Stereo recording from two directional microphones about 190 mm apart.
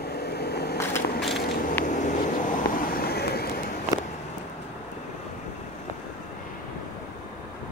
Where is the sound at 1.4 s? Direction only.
50° left (ahead or behind).